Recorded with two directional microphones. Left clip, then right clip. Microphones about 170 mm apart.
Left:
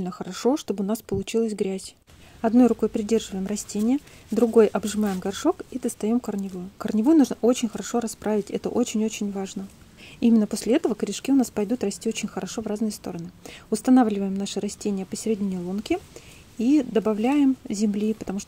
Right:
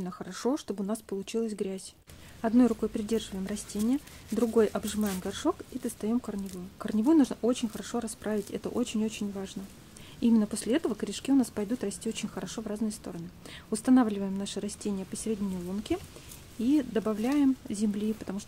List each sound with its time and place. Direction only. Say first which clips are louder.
0.0 s speech: left 8 dB; 30° left (ahead or behind)